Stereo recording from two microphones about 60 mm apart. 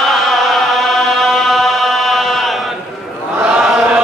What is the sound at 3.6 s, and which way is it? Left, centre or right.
Chant, centre.